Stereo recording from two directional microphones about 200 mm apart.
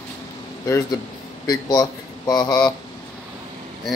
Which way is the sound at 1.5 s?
20° left (ahead or behind).